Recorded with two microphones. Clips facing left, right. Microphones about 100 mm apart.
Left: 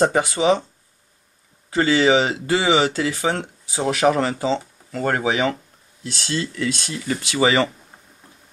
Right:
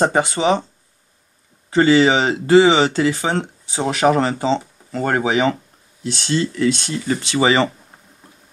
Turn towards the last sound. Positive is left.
turn(degrees=-30)  # may be behind; listen again after turning